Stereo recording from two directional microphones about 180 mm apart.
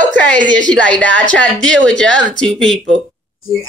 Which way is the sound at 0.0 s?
45° right (ahead or behind).